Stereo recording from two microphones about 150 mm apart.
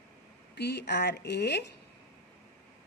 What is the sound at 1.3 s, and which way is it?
Speech, 90° left.